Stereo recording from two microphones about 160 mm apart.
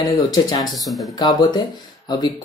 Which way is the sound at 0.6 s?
Centre (ahead or behind).